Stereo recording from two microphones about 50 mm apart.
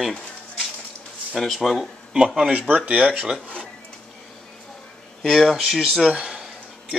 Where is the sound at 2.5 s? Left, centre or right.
Right.